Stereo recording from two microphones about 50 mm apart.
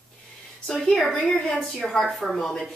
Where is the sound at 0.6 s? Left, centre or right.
Centre.